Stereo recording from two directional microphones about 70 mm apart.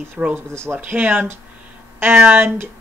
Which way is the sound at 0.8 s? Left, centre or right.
Right.